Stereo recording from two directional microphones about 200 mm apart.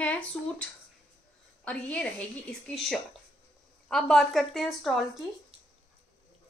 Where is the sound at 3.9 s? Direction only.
Centre (ahead or behind).